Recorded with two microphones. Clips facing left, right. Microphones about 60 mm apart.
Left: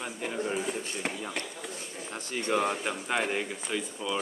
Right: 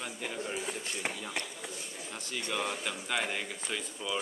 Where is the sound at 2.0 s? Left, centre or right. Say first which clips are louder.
Left 7 dB; left.